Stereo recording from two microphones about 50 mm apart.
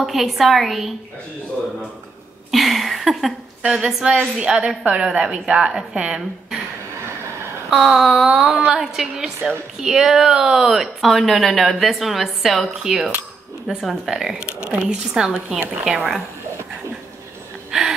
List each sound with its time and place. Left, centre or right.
0.0 s speech: centre
2.5 s speech: centre
3.6 s a woman's voice: centre
7.7 s a woman's voice: centre
14.7 s speech: right
15.1 s a woman's voice: centre
17.6 s a sound: centre